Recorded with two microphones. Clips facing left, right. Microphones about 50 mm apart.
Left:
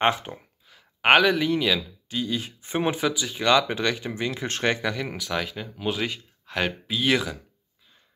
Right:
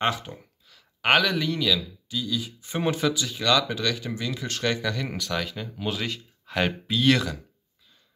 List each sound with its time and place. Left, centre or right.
0.0 s a sound: left
1.4 s speech: left
2.0 s speech: left
2.7 s speech: left
4.8 s speech: centre
6.4 s speech: centre